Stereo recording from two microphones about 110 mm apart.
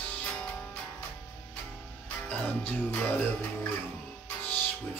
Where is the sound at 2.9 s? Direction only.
15° left (ahead or behind).